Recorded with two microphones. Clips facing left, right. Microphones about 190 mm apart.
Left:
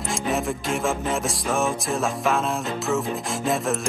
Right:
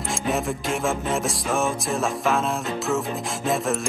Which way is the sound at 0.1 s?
Centre (ahead or behind).